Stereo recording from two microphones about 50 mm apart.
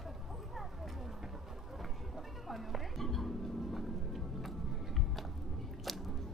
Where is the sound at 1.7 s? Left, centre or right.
Centre.